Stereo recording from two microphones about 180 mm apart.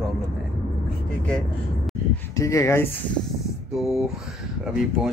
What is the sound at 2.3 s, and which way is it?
Speech, 15° left (ahead or behind).